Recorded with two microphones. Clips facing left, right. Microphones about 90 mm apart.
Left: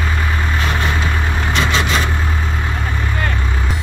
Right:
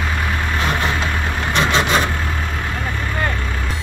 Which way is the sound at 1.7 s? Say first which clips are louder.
Right 1 dB; 50° right (ahead or behind).